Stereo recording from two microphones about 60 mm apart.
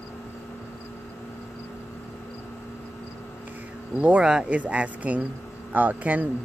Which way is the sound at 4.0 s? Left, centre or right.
Centre.